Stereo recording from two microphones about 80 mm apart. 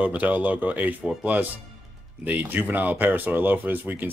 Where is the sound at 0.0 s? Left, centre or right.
Centre.